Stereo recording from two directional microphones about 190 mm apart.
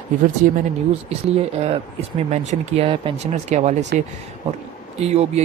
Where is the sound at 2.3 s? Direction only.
35° right (ahead or behind).